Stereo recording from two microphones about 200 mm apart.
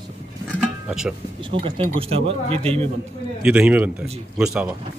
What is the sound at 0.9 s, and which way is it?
Speech, centre (ahead or behind).